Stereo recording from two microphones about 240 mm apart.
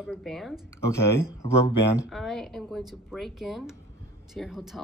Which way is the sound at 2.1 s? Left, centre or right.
Centre.